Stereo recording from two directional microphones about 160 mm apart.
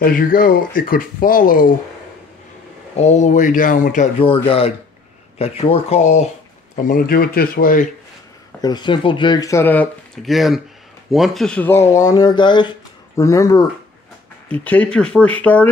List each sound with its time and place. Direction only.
0.0 s speech: 60° left (ahead or behind)
3.0 s speech: 45° left (ahead or behind)
4.5 s speech: 35° left (ahead or behind)
6.7 s speech: 55° left (ahead or behind)
8.5 s speech: 25° left (ahead or behind)
14.5 s speech: 10° left (ahead or behind)